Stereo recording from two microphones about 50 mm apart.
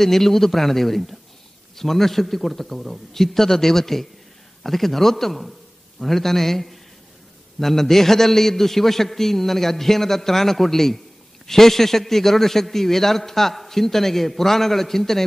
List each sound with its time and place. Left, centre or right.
0.0 s a man's voice: centre